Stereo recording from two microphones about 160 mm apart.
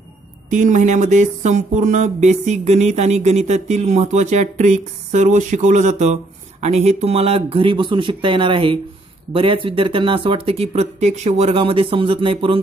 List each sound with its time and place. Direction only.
0.5 s speech: 50° right (ahead or behind); by 12.5 s 30° right (ahead or behind)